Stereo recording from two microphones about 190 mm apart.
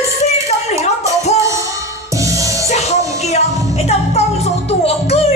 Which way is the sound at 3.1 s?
35° left (ahead or behind).